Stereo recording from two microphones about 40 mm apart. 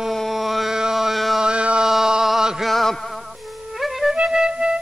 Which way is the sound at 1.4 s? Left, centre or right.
Right.